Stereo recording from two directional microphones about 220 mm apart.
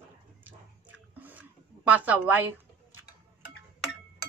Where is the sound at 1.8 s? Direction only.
5° right (ahead or behind).